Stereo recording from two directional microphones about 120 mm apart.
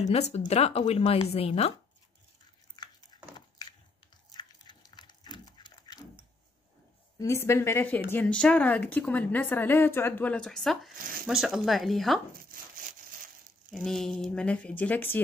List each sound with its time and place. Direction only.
0.1 s speech: 65° left (ahead or behind)
2.7 s a sound: 35° left (ahead or behind)
7.2 s a woman's voice: 25° left (ahead or behind); by 12.2 s centre (ahead or behind)
13.8 s speech: 5° left (ahead or behind)